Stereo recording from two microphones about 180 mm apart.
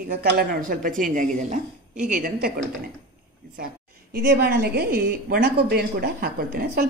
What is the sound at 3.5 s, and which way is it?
A woman's voice, 55° right (ahead or behind).